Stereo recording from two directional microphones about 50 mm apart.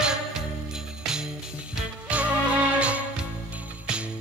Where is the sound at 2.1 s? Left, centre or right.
Right.